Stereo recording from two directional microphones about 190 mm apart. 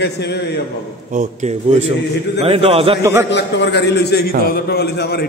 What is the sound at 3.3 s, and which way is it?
A man's voice, 65° left (ahead or behind).